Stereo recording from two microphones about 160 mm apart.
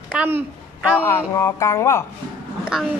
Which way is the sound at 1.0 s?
15° left (ahead or behind).